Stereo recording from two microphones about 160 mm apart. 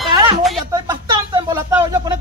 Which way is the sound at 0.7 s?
25° right (ahead or behind).